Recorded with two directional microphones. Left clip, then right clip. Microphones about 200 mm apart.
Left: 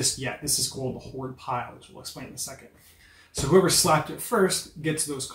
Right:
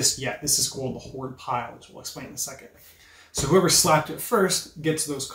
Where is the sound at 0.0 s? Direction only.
5° right (ahead or behind).